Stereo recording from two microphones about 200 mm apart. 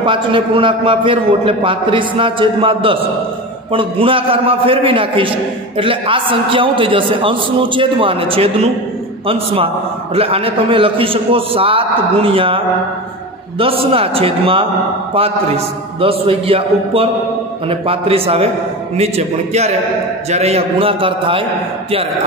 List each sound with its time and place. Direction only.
0.0 s a man's voice: 25° right (ahead or behind)